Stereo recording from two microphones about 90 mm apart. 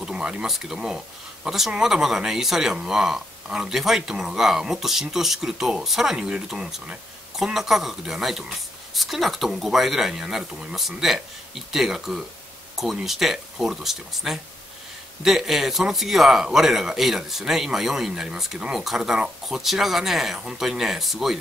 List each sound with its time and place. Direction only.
0.0 s speech: 10° right (ahead or behind)